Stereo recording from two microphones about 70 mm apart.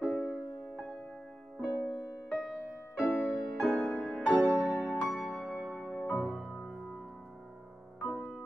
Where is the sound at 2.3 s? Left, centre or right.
Centre.